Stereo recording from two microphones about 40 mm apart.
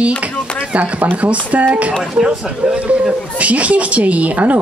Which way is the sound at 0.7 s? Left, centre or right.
Right.